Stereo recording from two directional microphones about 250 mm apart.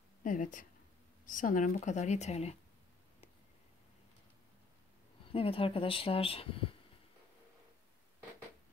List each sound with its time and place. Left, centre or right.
0.2 s speech: left
5.3 s speech: left